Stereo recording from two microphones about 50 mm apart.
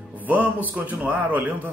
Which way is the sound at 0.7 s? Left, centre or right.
Right.